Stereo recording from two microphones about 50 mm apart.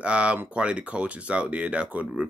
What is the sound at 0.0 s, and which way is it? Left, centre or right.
Speech, right.